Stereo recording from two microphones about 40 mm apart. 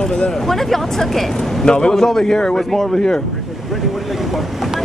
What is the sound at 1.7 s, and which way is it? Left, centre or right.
Speech, left.